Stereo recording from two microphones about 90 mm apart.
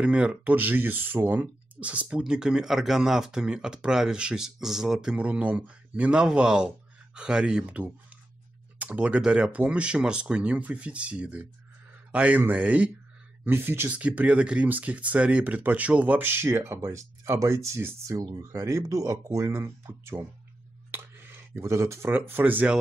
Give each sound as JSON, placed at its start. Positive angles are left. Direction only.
{"t": 0.0, "sound": "speech", "side_deg": -10}
{"t": 18.1, "sound": "speech", "side_deg": -50}
{"t": 18.5, "sound": "speech", "side_deg": -35}
{"t": 20.9, "sound": "a sound", "side_deg": -25}
{"t": 21.5, "sound": "speech", "side_deg": -30}